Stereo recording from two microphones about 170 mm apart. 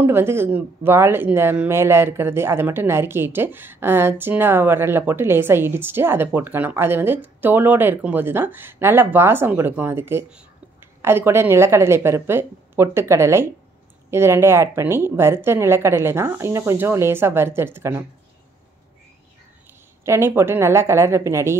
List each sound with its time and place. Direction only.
0.0 s speech: 15° right (ahead or behind)
20.1 s speech: 15° right (ahead or behind)